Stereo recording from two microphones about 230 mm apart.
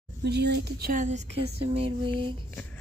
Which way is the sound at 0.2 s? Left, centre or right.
Right.